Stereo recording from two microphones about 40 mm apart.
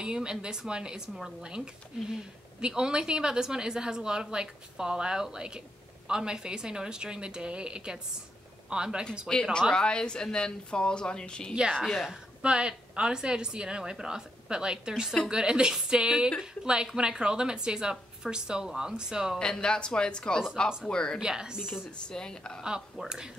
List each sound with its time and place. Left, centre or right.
0.0 s a woman's voice: right
9.3 s speech: centre
11.9 s a woman's voice: centre
12.4 s a woman's voice: right
19.6 s speech: left
21.2 s a woman's voice: centre
21.9 s speech: left
23.0 s a woman's voice: centre